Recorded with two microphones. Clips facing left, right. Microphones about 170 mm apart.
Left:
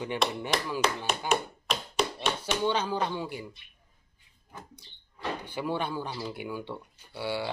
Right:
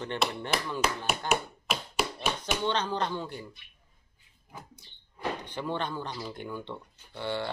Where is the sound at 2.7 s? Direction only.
10° left (ahead or behind).